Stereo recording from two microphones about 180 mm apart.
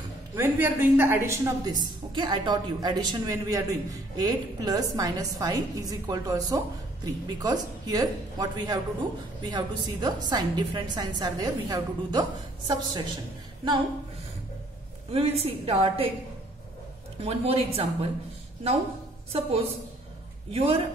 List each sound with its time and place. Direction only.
0.4 s a woman's voice: 10° right (ahead or behind)
15.0 s a woman's voice: 35° right (ahead or behind)
17.2 s a woman's voice: 35° right (ahead or behind)
19.3 s a woman's voice: 35° right (ahead or behind)